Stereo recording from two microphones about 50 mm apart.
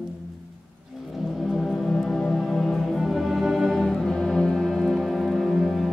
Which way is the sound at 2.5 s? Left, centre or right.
Centre.